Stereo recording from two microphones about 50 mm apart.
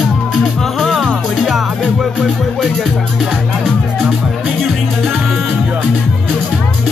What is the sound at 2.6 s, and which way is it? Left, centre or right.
Music, centre.